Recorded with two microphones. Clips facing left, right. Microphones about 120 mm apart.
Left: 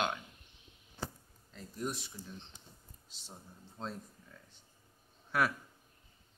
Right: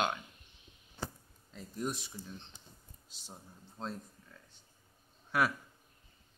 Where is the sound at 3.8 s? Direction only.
Centre (ahead or behind).